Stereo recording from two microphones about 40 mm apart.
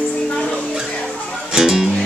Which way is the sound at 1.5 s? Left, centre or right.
Centre.